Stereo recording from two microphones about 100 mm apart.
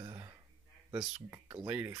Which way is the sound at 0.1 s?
30° right (ahead or behind).